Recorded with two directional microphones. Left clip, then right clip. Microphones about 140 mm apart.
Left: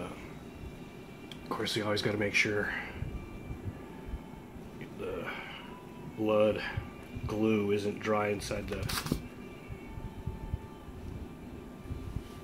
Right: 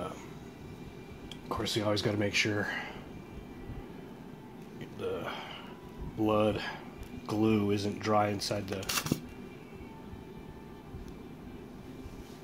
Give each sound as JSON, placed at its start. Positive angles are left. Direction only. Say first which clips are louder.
{"t": 1.5, "sound": "speech", "louder": "right 1 dB", "side_deg": -30}
{"t": 5.0, "sound": "a sound", "louder": "right 2 dB", "side_deg": -75}
{"t": 6.2, "sound": "speech", "louder": "left 1 dB", "side_deg": -70}
{"t": 8.9, "sound": "speech", "louder": "right 3 dB", "side_deg": -40}